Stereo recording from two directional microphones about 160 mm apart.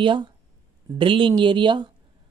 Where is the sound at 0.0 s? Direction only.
30° right (ahead or behind).